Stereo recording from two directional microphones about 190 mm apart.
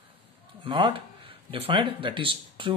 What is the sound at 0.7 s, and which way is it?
Speech, 25° right (ahead or behind).